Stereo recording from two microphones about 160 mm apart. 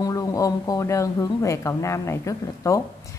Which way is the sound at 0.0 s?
20° left (ahead or behind).